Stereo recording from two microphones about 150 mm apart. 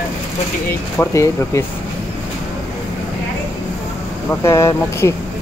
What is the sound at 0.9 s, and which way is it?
Speech, 20° left (ahead or behind).